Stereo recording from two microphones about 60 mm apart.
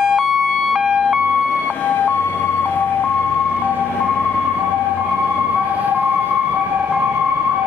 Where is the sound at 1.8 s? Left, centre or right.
Left.